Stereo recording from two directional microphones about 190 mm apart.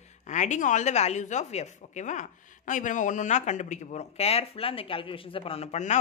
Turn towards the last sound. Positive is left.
turn(degrees=35)  # may be behind; listen again after turning